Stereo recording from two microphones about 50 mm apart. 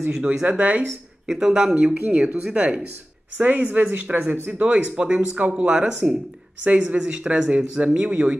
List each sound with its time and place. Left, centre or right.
0.2 s speech: centre
1.2 s speech: centre
6.6 s speech: right